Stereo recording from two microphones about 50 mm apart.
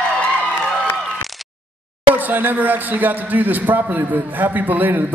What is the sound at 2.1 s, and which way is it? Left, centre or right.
Speech, right.